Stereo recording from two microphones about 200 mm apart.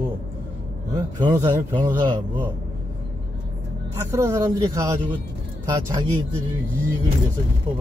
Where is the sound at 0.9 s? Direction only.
15° right (ahead or behind).